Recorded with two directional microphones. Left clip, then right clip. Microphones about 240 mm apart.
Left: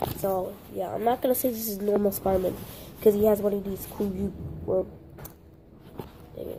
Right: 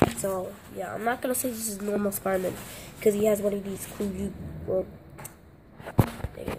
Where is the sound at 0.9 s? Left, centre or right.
Centre.